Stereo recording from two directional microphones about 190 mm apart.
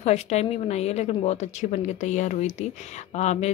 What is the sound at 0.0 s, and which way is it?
A woman's voice, 35° left (ahead or behind).